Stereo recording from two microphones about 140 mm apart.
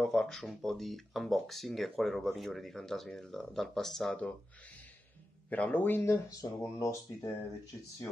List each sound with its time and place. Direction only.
0.0 s speech: 5° left (ahead or behind)
5.5 s speech: 10° left (ahead or behind)